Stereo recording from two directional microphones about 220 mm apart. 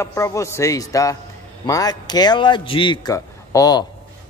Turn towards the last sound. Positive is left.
turn(degrees=15)  # may be behind; listen again after turning